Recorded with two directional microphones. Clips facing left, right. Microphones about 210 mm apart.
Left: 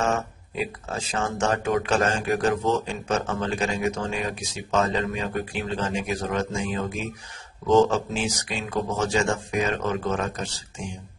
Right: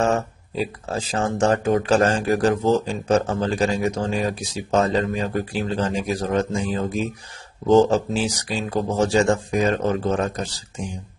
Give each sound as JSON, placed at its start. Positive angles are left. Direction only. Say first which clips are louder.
{"t": 0.0, "sound": "speech", "louder": "right 4 dB", "side_deg": -35}